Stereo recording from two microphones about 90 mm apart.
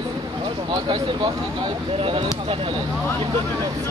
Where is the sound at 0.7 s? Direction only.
55° right (ahead or behind).